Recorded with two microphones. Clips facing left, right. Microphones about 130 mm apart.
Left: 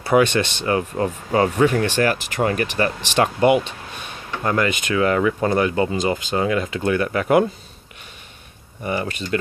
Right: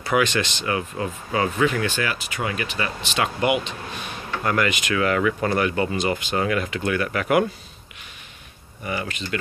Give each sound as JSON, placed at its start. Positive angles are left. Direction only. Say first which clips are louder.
{"t": 0.1, "sound": "speech", "louder": "left 5 dB", "side_deg": 35}
{"t": 3.3, "sound": "speech", "louder": "left 6 dB", "side_deg": 35}
{"t": 8.8, "sound": "speech", "louder": "left 4 dB", "side_deg": 30}